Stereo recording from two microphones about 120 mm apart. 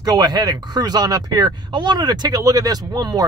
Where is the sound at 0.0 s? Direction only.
35° right (ahead or behind).